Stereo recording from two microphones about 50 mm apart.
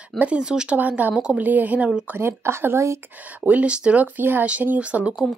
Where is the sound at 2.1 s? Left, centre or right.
Right.